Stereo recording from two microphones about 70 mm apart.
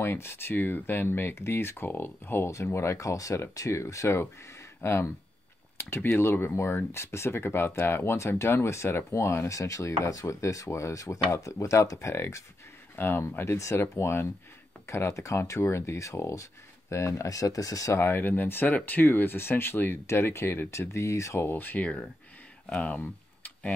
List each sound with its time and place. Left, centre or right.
0.0 s speech: left
12.9 s speech: left
17.9 s speech: left
21.4 s speech: left
22.7 s a sound: centre